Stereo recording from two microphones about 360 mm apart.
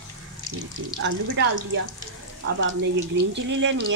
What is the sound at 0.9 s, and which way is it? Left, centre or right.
Speech, right.